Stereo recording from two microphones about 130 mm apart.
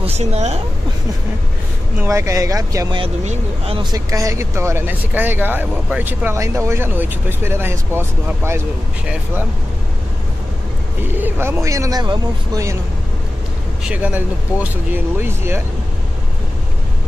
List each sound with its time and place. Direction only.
0.0 s a woman's voice: 55° right (ahead or behind)
2.0 s speech: 20° right (ahead or behind)
3.3 s speech: 50° right (ahead or behind)
3.8 s speech: 30° right (ahead or behind)
11.1 s speech: 15° right (ahead or behind); by 12.6 s 30° right (ahead or behind)
13.8 s speech: 10° right (ahead or behind)